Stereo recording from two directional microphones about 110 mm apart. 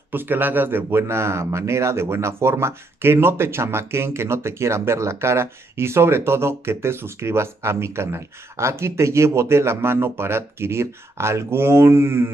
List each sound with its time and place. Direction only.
0.1 s speech: 20° right (ahead or behind)